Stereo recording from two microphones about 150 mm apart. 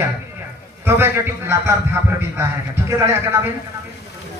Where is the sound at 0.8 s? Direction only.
15° right (ahead or behind).